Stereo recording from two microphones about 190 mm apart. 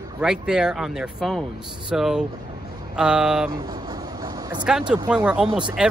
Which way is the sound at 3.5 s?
20° right (ahead or behind).